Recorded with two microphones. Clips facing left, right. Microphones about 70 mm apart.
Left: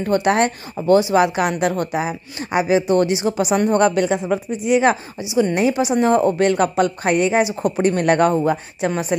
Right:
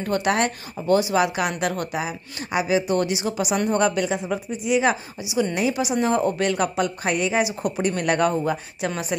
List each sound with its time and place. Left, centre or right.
0.0 s speech: left
5.3 s speech: left
6.7 s speech: left
7.1 s speech: left